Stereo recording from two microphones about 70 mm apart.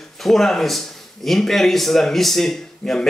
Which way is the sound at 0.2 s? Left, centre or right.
Centre.